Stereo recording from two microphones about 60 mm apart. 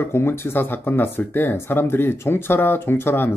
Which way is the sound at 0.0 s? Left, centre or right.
Left.